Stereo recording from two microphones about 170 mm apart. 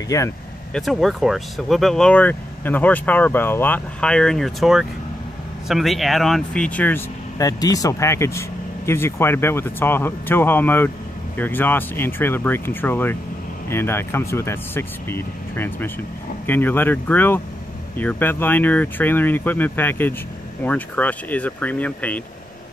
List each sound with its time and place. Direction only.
0.1 s speech: 20° left (ahead or behind)
0.7 s speech: centre (ahead or behind)
7.3 s speech: 20° left (ahead or behind)